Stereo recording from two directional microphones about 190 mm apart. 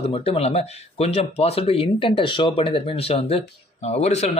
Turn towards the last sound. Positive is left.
turn(degrees=35)  # may be behind; listen again after turning